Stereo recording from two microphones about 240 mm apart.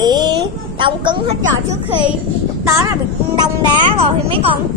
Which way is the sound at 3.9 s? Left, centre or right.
Right.